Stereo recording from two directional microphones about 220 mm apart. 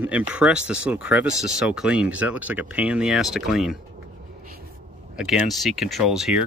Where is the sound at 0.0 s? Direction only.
5° right (ahead or behind).